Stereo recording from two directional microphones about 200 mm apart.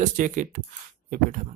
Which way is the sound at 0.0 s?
40° right (ahead or behind).